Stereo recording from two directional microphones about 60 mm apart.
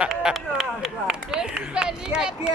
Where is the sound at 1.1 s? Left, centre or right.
Centre.